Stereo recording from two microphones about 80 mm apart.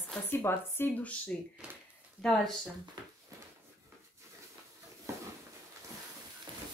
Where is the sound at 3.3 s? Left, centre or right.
Right.